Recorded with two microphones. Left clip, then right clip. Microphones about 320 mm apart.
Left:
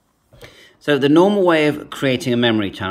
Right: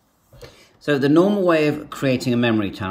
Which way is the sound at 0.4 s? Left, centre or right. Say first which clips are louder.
Left 2 dB; centre.